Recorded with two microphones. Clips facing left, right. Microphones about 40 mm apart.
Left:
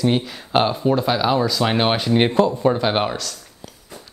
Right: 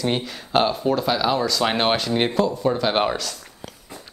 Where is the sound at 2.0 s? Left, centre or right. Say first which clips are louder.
Left 4 dB; centre.